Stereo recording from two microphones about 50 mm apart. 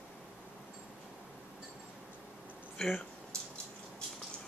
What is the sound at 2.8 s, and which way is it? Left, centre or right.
Speech, centre.